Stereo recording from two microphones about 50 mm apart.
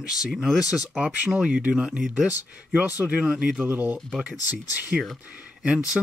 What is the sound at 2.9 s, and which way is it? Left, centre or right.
Speech, right.